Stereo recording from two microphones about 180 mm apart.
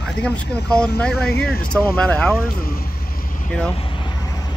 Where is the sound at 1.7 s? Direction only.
5° left (ahead or behind).